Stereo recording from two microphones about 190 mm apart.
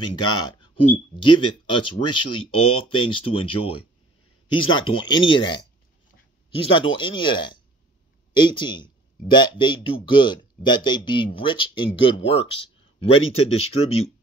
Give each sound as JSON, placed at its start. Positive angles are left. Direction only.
{"t": 0.1, "sound": "speech", "side_deg": 25}
{"t": 6.7, "sound": "speech", "side_deg": 25}